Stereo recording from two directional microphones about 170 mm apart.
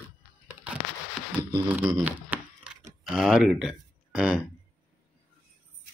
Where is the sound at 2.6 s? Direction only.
45° right (ahead or behind).